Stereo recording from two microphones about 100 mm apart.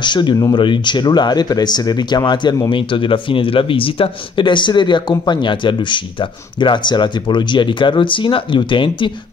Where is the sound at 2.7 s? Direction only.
60° left (ahead or behind).